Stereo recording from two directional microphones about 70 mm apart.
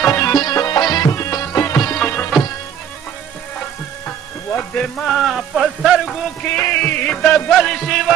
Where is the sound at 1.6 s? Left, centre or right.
Left.